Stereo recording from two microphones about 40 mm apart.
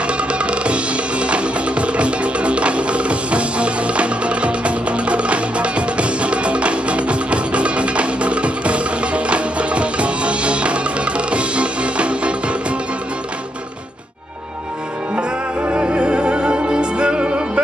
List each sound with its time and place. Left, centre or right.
0.0 s music: right
15.6 s music: right